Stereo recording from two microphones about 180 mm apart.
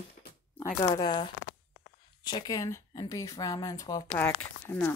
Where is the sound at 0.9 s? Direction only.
25° left (ahead or behind).